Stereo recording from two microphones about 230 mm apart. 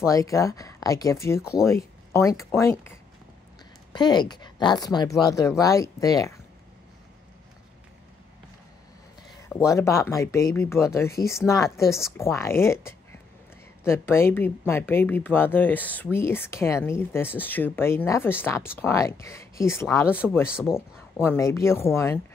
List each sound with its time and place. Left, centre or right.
0.0 s speech: centre
3.9 s speech: centre
9.3 s speech: centre
12.2 s speech: centre
20.4 s speech: centre
21.2 s speech: centre